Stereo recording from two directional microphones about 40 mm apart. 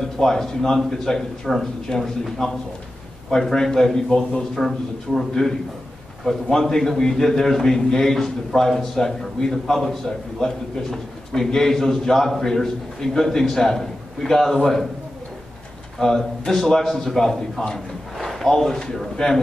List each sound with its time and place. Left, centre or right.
0.2 s a man's voice: centre
4.6 s a man's voice: centre
6.5 s a man's voice: centre
16.0 s a man's voice: centre
17.7 s a sound: centre
18.8 s a man's voice: centre